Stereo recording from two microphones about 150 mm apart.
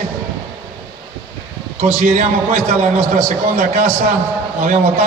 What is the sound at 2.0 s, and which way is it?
A man's voice, 60° right (ahead or behind).